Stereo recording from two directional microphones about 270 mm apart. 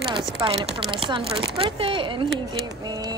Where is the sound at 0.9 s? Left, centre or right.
Centre.